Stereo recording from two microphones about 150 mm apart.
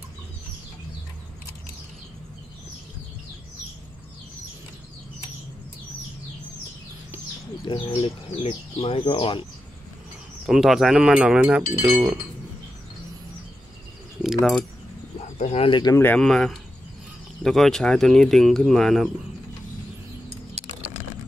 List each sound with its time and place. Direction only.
7.9 s speech: 45° left (ahead or behind)
10.4 s speech: 5° right (ahead or behind)
14.2 s keys jangling: 5° right (ahead or behind)
15.3 s speech: 45° left (ahead or behind)
16.0 s speech: 10° left (ahead or behind)